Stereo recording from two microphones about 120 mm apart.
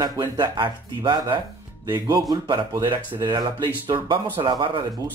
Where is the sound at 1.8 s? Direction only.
30° right (ahead or behind).